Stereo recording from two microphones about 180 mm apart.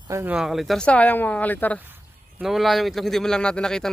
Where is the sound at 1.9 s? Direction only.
5° right (ahead or behind).